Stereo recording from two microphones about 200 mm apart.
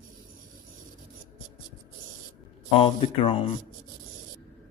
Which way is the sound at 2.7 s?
25° left (ahead or behind).